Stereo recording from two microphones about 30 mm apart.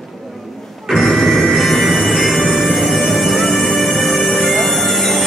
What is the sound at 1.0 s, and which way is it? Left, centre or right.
Music, centre.